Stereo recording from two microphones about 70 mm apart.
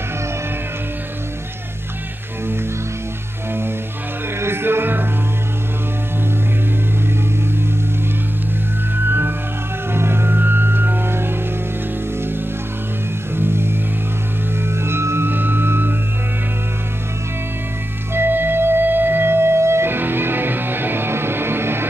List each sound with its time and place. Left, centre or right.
4.4 s music: right
8.9 s music: right
13.4 s music: right
14.8 s music: right
18.1 s music: right